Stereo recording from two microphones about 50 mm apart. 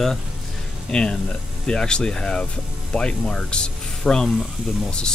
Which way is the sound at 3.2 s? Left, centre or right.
Centre.